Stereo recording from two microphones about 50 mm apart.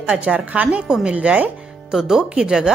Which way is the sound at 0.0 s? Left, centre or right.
Right.